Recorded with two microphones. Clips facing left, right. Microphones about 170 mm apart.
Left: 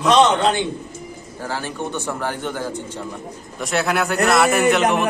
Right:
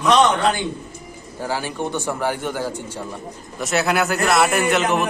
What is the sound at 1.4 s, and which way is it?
A man's voice, 10° right (ahead or behind).